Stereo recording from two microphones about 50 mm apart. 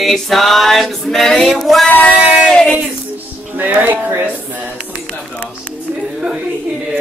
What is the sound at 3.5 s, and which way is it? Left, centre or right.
Speech, right.